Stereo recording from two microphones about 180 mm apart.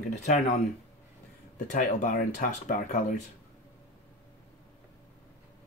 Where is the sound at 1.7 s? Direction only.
45° left (ahead or behind).